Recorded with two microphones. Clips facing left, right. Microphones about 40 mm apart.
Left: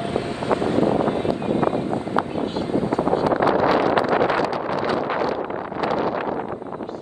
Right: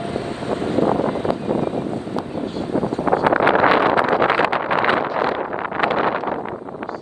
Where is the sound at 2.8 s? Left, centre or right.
Left.